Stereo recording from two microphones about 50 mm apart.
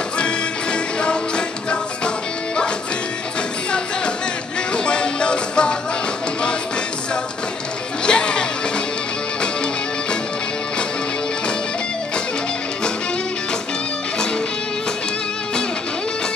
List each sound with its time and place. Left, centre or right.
0.2 s music: centre
4.7 s music: centre
8.0 s music: centre